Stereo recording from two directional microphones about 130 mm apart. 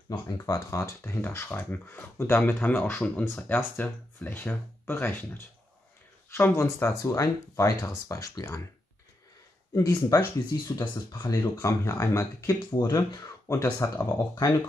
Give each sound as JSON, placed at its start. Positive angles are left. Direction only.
{"t": 0.4, "sound": "speech", "side_deg": 25}
{"t": 6.3, "sound": "speech", "side_deg": 20}
{"t": 9.8, "sound": "speech", "side_deg": 25}